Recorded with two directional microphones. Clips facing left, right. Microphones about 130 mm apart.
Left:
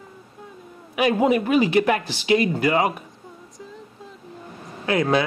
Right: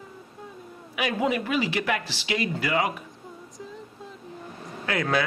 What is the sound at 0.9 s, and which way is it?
Speech, 35° left (ahead or behind).